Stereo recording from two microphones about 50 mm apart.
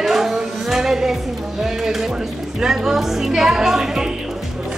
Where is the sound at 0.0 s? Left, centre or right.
Centre.